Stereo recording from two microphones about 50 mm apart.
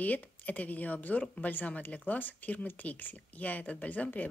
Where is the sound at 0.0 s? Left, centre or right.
Left.